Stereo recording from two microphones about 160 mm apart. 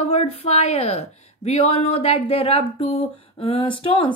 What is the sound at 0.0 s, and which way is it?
Speech, 40° left (ahead or behind).